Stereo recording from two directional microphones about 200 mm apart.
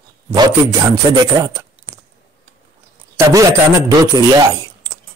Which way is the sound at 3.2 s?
15° right (ahead or behind).